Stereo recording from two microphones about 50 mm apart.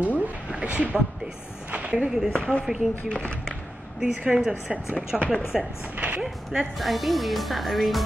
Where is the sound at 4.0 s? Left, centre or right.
Centre.